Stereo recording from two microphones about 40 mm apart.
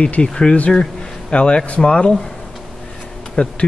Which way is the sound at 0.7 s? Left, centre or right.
Centre.